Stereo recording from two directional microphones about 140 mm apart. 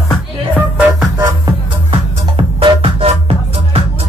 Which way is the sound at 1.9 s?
40° right (ahead or behind).